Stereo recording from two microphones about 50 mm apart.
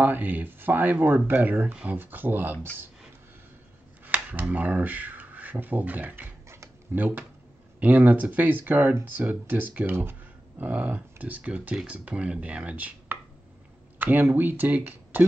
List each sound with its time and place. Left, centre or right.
0.0 s speech: right
4.0 s speech: right
10.6 s speech: right
13.9 s speech: right